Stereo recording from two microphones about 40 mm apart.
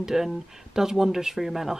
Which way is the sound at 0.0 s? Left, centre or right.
Centre.